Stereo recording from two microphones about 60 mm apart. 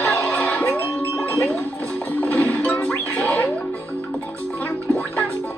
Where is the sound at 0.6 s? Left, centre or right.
Left.